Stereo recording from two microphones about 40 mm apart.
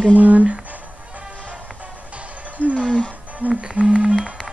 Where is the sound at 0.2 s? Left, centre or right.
Right.